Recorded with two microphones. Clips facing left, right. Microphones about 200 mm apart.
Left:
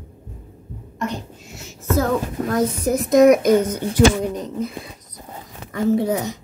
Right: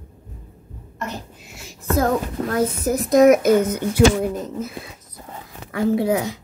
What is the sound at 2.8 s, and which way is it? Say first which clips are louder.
A woman's voice: left 1 dB; centre (ahead or behind).